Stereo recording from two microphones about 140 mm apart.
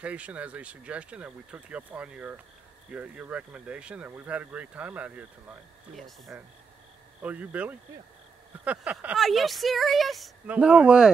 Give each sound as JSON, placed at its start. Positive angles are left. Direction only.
{"t": 0.0, "sound": "speech", "side_deg": -10}
{"t": 5.9, "sound": "speech", "side_deg": 0}
{"t": 7.2, "sound": "speech", "side_deg": -10}
{"t": 9.0, "sound": "speech", "side_deg": 0}